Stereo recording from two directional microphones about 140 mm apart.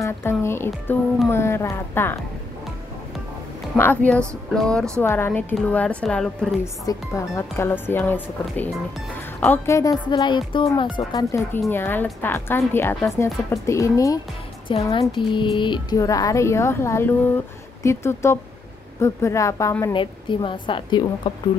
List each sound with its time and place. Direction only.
0.0 s speech: 20° left (ahead or behind)
3.7 s speech: 15° left (ahead or behind)
5.0 s speech: 15° left (ahead or behind)
6.6 s speech: 20° left (ahead or behind)
9.8 s speech: 25° left (ahead or behind)
11.7 s a woman's voice: 15° left (ahead or behind)
14.7 s speech: 40° left (ahead or behind)
16.0 s a woman's voice: 25° left (ahead or behind)
19.9 s speech: 35° left (ahead or behind)